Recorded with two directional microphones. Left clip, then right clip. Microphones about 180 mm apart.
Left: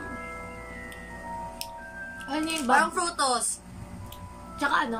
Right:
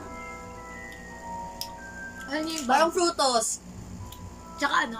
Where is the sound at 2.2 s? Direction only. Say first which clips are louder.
Left 1 dB; 15° left (ahead or behind).